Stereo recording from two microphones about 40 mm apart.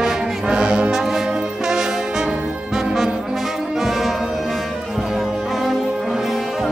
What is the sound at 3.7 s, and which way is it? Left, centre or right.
Music, centre.